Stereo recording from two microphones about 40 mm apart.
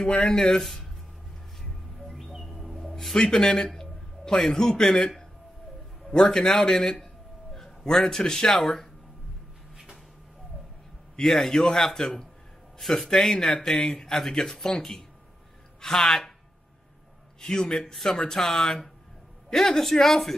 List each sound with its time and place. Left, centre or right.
0.3 s speech: centre
2.0 s bird: centre
3.2 s speech: centre
11.2 s speech: centre
17.4 s speech: centre
18.4 s speech: centre